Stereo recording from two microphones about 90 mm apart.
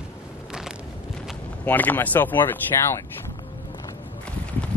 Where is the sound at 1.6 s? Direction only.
20° left (ahead or behind).